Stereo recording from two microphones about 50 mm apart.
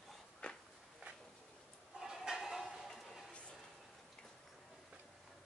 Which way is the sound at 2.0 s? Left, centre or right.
Centre.